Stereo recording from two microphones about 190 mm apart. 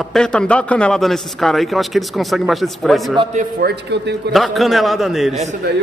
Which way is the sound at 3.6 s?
60° right (ahead or behind).